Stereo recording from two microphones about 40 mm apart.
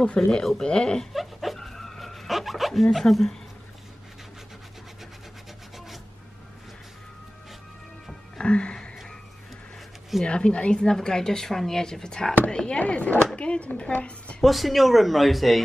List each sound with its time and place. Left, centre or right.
0.0 s speech: centre
1.1 s dog: centre
8.4 s music: left
10.2 s speech: left
10.9 s speech: centre
12.7 s a woman's voice: left
14.4 s speech: centre